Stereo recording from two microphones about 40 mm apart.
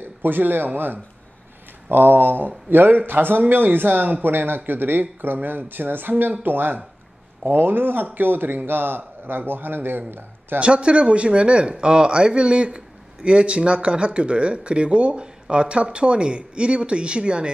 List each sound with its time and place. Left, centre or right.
0.2 s speech: right
1.9 s speech: right
10.6 s speech: right